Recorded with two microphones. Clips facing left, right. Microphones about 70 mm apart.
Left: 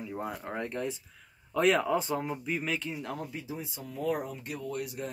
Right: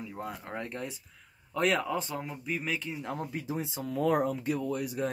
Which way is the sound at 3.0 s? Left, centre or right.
Right.